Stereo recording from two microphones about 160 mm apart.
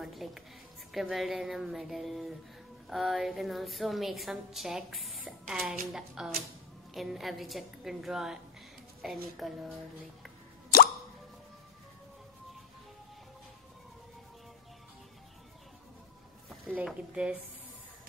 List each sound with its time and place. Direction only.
0.0 s a sound: centre (ahead or behind)
0.9 s a woman's voice: centre (ahead or behind)
10.7 s plop: 70° left (ahead or behind)
16.4 s speech: 5° right (ahead or behind)